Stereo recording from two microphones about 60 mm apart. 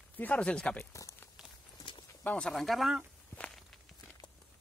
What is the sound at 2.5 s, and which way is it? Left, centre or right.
Speech, centre.